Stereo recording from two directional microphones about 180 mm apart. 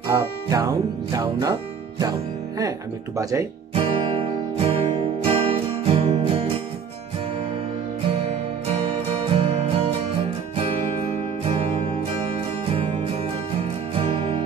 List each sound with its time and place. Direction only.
0.1 s music: 20° right (ahead or behind)
3.2 s speech: 20° right (ahead or behind)
3.7 s music: 30° right (ahead or behind)
9.3 s music: 35° right (ahead or behind)
13.9 s music: 30° right (ahead or behind)